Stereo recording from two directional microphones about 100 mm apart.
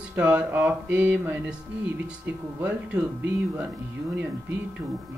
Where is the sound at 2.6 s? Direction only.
20° right (ahead or behind).